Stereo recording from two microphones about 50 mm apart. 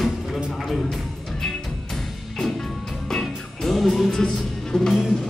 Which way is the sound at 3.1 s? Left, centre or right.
Centre.